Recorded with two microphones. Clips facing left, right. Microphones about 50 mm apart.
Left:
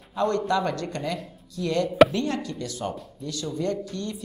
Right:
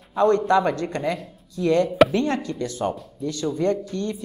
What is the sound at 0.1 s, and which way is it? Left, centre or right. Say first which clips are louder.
A man's voice: right 6 dB; right.